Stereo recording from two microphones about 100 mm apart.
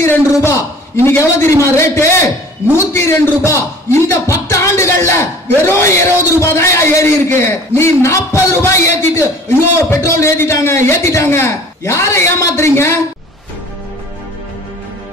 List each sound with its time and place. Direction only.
0.3 s a man's voice: 25° left (ahead or behind)